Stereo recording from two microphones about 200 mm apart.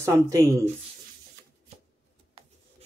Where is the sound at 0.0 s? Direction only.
15° right (ahead or behind).